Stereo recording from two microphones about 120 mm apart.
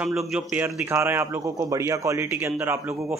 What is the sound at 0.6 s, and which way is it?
Speech, 20° right (ahead or behind).